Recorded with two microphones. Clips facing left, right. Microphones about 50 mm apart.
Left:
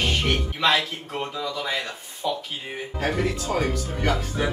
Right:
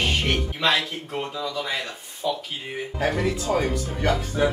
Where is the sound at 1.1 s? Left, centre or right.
Centre.